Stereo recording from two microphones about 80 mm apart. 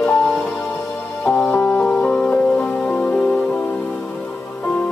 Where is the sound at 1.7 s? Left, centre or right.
Centre.